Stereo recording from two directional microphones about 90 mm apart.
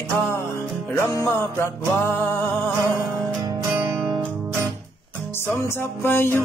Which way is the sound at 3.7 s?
20° right (ahead or behind).